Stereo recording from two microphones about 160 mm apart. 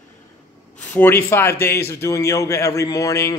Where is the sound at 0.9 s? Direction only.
15° left (ahead or behind).